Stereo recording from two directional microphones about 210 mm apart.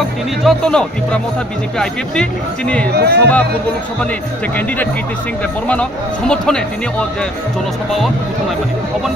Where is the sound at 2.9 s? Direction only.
50° right (ahead or behind).